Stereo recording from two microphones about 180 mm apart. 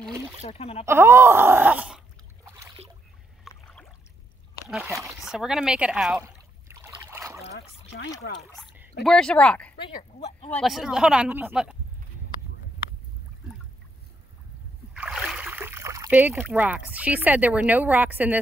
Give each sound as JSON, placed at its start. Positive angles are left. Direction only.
{"t": 0.4, "sound": "speech", "side_deg": 35}
{"t": 0.8, "sound": "speech", "side_deg": -15}
{"t": 2.4, "sound": "boat", "side_deg": -20}
{"t": 3.5, "sound": "a sound", "side_deg": 0}
{"t": 4.6, "sound": "speech", "side_deg": 0}
{"t": 6.2, "sound": "a sound", "side_deg": -15}
{"t": 9.0, "sound": "speech", "side_deg": 5}
{"t": 9.8, "sound": "speech", "side_deg": 30}
{"t": 10.5, "sound": "speech", "side_deg": 0}
{"t": 15.0, "sound": "a sound", "side_deg": 0}
{"t": 16.5, "sound": "speech", "side_deg": -10}